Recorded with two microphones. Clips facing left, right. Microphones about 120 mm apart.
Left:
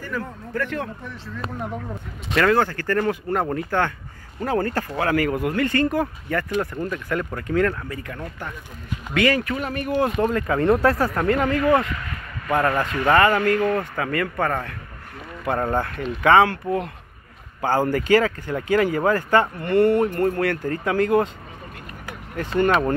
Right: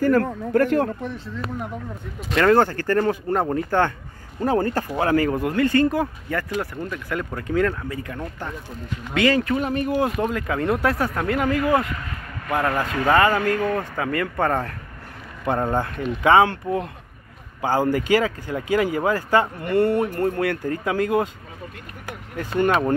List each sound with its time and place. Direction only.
0.0 s speech: 55° right (ahead or behind)
2.3 s speech: 25° right (ahead or behind)
10.0 s speech: 5° right (ahead or behind)
22.4 s speech: 10° right (ahead or behind)